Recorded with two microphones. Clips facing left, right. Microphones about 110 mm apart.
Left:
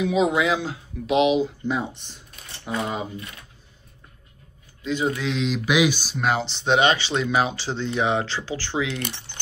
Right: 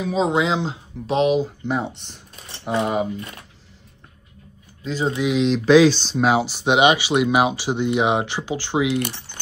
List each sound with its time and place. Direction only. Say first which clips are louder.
0.0 s speech: even; 35° right (ahead or behind); by 3.1 s 65° right (ahead or behind)
4.8 s mantra: right 1 dB; 35° right (ahead or behind)
5.3 s speech: right 6 dB; centre (ahead or behind)
5.7 s speech: right 8 dB; 15° left (ahead or behind)
6.1 s speech: right 5 dB; 5° right (ahead or behind)